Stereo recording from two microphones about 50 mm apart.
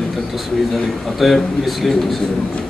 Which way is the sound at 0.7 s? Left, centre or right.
Centre.